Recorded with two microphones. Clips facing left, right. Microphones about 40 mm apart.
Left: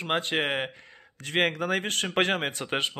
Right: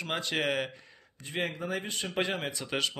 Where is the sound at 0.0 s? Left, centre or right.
Left.